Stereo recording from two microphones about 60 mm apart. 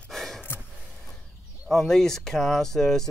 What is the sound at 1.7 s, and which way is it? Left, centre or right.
Speech, centre.